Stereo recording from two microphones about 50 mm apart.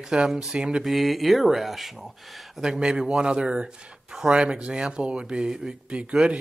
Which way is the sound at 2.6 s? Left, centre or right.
Centre.